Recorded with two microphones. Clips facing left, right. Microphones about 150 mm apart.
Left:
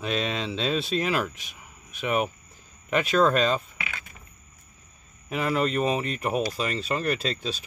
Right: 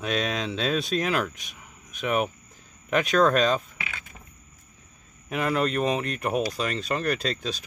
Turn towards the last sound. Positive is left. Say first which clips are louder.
# even
turn(degrees=0)  # may be behind; listen again after turning